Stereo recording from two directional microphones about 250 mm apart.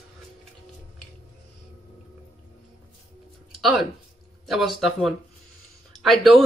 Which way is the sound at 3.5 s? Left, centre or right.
Centre.